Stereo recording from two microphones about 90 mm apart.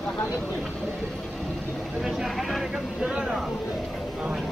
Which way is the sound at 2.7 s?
10° right (ahead or behind).